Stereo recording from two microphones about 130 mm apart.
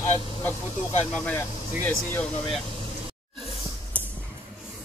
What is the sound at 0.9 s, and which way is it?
Speech, 60° left (ahead or behind).